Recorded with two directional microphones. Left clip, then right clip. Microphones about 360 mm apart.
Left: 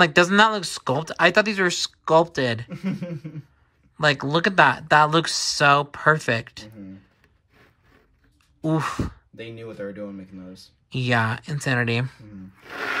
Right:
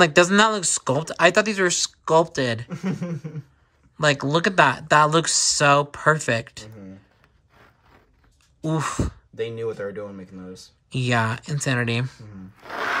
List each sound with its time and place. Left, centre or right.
0.0 s speech: centre
2.8 s speech: right
3.9 s speech: centre
8.6 s speech: centre
9.8 s speech: right
10.9 s speech: centre